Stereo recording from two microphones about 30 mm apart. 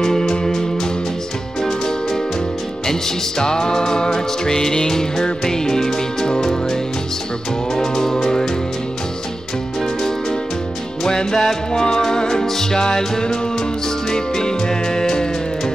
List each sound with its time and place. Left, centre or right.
0.0 s music: centre
2.9 s music: left
7.7 s music: centre
11.1 s music: left